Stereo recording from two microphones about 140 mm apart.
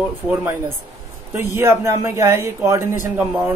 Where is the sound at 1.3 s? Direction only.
15° right (ahead or behind).